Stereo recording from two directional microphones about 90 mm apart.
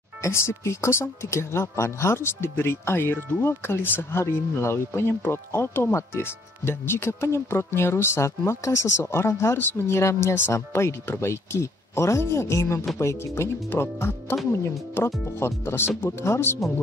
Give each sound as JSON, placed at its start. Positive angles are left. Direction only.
{"t": 0.2, "sound": "speech", "side_deg": 30}